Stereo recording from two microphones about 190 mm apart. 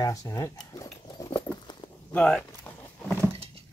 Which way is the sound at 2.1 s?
5° left (ahead or behind).